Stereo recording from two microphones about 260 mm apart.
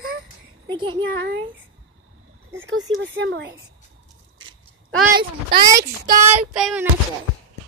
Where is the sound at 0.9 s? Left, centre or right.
Right.